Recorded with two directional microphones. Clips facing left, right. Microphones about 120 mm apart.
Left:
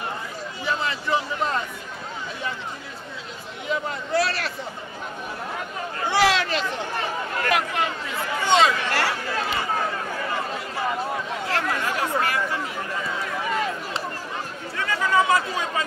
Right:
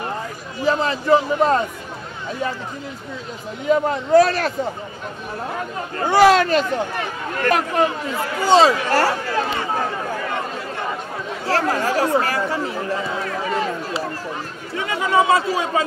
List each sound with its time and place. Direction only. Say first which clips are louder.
0.7 s a man's voice: right 9 dB; 40° right (ahead or behind)
3.6 s speech: right 10 dB; 45° right (ahead or behind)
5.9 s a man's voice: right 8 dB; 45° right (ahead or behind)
11.4 s speech: right 8 dB; 35° right (ahead or behind)
14.8 s chatter: right 3 dB; 20° right (ahead or behind)